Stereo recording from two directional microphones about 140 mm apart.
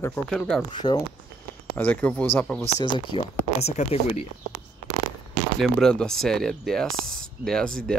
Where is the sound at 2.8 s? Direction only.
35° left (ahead or behind).